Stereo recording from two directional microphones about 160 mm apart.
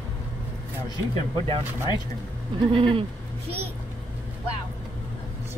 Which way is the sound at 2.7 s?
35° right (ahead or behind).